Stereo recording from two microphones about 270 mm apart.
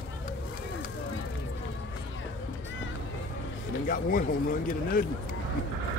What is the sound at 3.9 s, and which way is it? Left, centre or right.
Speech, left.